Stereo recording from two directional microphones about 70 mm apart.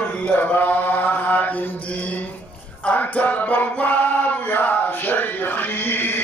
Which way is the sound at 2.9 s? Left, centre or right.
Left.